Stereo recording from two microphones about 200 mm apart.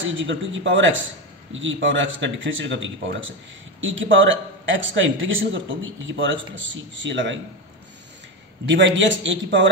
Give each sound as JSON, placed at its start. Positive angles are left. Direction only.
{"t": 0.0, "sound": "speech", "side_deg": -70}
{"t": 8.6, "sound": "a man's voice", "side_deg": -65}